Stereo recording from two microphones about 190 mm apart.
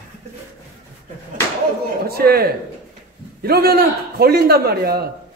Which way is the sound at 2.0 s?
55° right (ahead or behind).